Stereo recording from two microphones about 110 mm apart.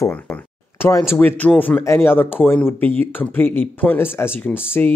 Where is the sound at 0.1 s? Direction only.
20° left (ahead or behind).